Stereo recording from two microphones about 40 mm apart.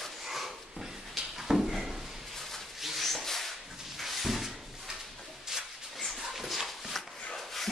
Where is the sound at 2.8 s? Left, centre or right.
Centre.